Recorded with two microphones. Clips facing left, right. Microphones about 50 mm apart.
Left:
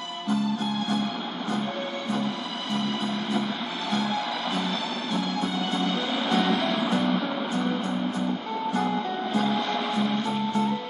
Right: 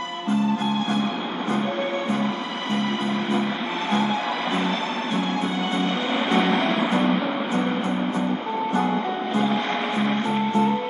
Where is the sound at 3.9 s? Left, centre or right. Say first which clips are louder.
Right 4 dB; right.